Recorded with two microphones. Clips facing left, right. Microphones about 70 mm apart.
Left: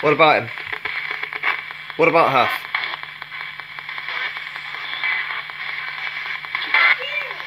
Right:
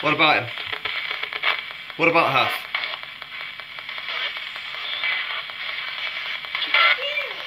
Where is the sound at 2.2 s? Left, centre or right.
Left.